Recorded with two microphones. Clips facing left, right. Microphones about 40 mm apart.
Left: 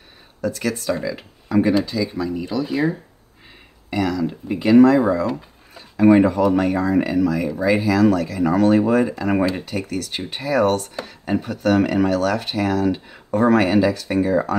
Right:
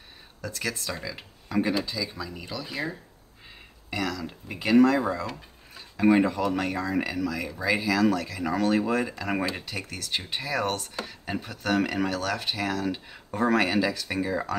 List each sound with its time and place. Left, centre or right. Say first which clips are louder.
0.4 s speech: left 9 dB; centre
2.0 s speech: left 10 dB; left
2.3 s speech: left 12 dB; centre
5.0 s speech: left 10 dB; centre